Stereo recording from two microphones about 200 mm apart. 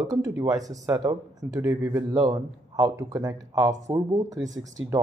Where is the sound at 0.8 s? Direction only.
20° right (ahead or behind).